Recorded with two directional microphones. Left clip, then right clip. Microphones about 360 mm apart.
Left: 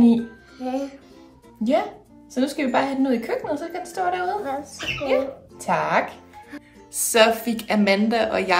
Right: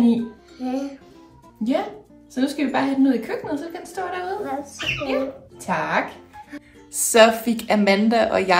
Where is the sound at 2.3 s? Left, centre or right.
Centre.